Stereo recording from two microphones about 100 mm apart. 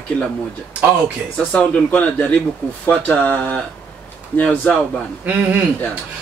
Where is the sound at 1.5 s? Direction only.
15° left (ahead or behind).